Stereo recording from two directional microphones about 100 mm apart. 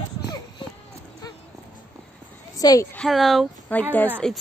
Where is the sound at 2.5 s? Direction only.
40° left (ahead or behind).